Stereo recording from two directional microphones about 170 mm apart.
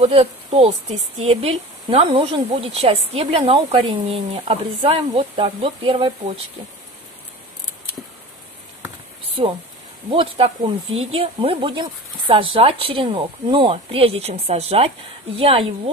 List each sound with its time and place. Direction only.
0.0 s speech: 35° right (ahead or behind)
10.0 s speech: 35° right (ahead or behind)